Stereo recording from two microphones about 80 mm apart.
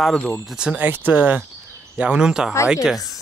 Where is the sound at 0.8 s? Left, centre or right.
Right.